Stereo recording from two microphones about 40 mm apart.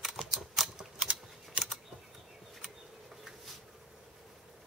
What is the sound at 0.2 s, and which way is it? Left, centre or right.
Typing, centre.